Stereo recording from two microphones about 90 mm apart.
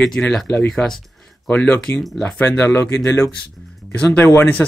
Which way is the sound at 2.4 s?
25° left (ahead or behind).